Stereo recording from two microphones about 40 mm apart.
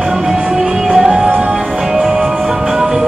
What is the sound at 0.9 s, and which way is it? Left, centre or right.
Music, centre.